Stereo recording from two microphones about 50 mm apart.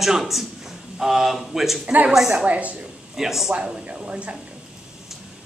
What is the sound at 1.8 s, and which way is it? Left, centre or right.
Speech, right.